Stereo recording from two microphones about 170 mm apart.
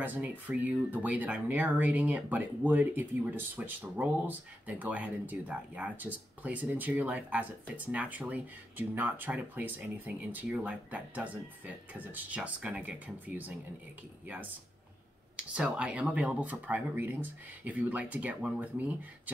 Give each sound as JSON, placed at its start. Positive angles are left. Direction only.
{"t": 0.0, "sound": "speech", "side_deg": -10}